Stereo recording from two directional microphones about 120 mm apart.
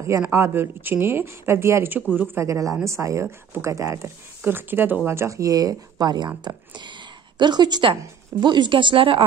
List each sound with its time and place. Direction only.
0.3 s a woman's voice: 20° right (ahead or behind); by 9.2 s 45° right (ahead or behind)